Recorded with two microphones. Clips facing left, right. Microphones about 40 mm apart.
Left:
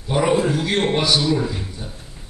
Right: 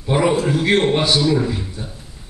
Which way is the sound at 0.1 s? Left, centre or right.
Right.